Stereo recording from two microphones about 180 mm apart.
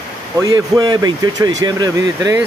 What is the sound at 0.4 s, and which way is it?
Speech, 20° right (ahead or behind).